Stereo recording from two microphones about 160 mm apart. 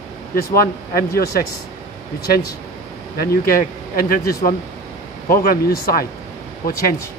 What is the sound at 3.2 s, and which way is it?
Speech, 65° left (ahead or behind).